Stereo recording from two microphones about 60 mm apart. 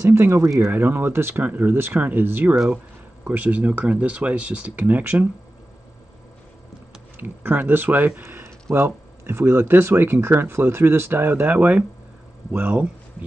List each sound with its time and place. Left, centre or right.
0.1 s speech: right
7.2 s speech: right
8.2 s a sound: right
8.7 s speech: right